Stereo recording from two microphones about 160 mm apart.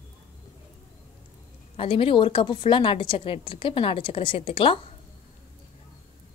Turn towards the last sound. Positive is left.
turn(degrees=35)  # may be behind; listen again after turning